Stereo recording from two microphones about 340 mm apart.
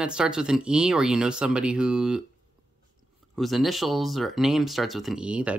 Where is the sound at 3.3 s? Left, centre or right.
Centre.